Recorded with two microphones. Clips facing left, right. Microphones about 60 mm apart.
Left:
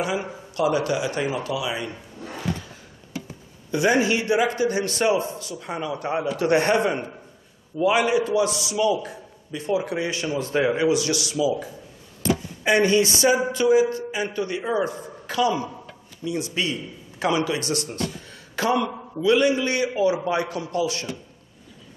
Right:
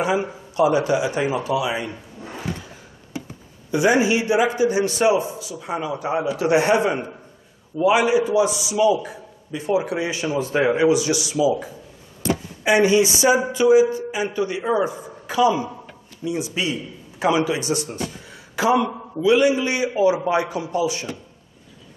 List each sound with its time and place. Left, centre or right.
0.0 s speech: right
3.7 s speech: centre